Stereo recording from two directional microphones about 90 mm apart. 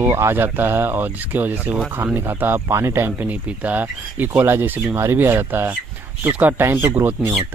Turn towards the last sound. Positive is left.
turn(degrees=-25)  # may be behind; listen again after turning